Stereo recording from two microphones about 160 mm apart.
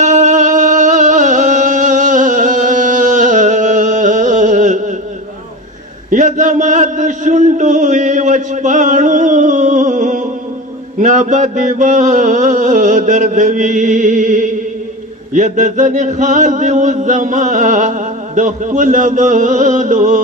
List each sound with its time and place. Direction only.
0.0 s music: 50° right (ahead or behind)
6.0 s a sound: 50° right (ahead or behind)
11.0 s chant: 50° right (ahead or behind)